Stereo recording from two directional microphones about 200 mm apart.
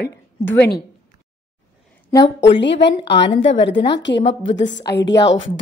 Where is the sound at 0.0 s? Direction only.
55° left (ahead or behind).